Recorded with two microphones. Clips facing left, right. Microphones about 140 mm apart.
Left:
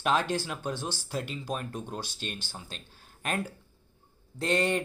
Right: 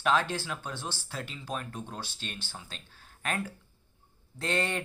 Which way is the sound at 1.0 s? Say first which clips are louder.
Left 4 dB; 10° left (ahead or behind).